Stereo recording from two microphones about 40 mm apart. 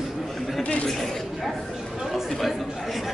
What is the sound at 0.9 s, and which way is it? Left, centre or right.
Speech, centre.